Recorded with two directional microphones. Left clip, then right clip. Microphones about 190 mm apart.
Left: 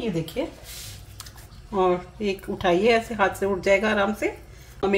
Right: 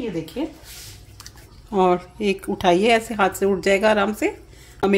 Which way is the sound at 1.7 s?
50° right (ahead or behind).